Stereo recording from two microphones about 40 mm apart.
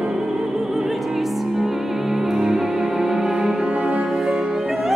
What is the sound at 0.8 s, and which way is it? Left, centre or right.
Opera, centre.